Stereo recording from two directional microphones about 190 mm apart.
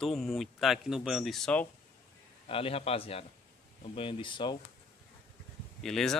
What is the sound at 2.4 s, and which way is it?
A man's voice, 30° left (ahead or behind).